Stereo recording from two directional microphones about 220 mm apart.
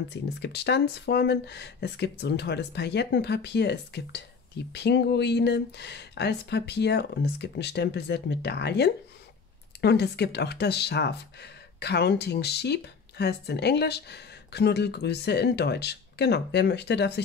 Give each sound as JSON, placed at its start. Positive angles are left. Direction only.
{"t": 0.1, "sound": "speech", "side_deg": 50}